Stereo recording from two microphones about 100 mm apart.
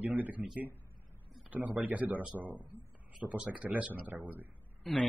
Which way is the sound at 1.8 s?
15° right (ahead or behind).